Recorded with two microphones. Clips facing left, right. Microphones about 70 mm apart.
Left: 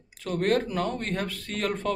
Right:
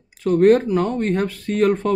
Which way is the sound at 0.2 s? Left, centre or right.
Centre.